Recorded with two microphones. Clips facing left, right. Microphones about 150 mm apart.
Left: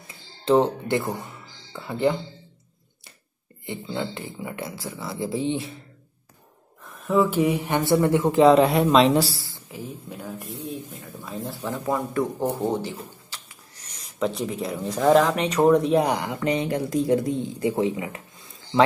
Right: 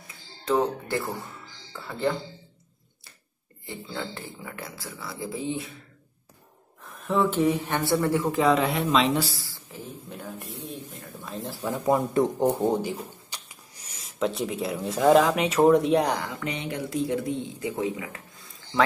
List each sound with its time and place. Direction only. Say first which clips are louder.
0.5 s speech: left 5 dB; 25° left (ahead or behind)
3.6 s speech: left 5 dB; 20° left (ahead or behind)
7.1 s speech: left 2 dB; 5° left (ahead or behind); by 9.5 s 35° left (ahead or behind)
9.5 s speech: left 4 dB; 10° left (ahead or behind)
11.6 s speech: right 3 dB; 10° right (ahead or behind)
11.9 s speech: right 3 dB; 20° right (ahead or behind)
13.3 s a sound: even; 10° right (ahead or behind)
14.0 s speech: left 1 dB; centre (ahead or behind)
16.3 s a man's voice: left 7 dB; 40° left (ahead or behind); by 18.9 s 25° left (ahead or behind)